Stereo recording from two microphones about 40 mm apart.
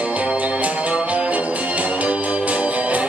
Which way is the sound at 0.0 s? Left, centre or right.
Right.